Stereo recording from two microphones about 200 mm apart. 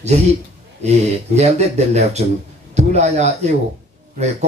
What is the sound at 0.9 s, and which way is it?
Speech, 35° right (ahead or behind).